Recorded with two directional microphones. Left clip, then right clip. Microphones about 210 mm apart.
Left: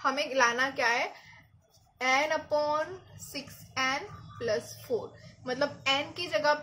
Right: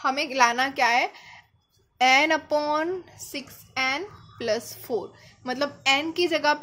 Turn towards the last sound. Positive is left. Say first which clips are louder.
# right 5 dB
turn(degrees=-45)  # may be behind; listen again after turning